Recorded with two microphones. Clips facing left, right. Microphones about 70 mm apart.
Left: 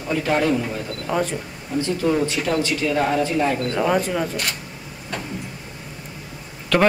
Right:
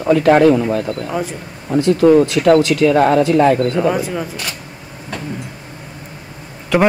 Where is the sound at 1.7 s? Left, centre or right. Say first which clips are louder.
Right 10 dB; right.